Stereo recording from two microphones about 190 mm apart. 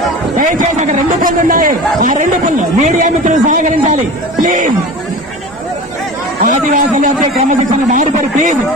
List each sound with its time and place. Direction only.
0.4 s a man's voice: 45° right (ahead or behind)
6.4 s a man's voice: 40° right (ahead or behind)